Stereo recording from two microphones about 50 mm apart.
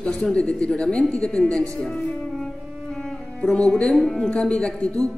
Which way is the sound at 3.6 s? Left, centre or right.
Left.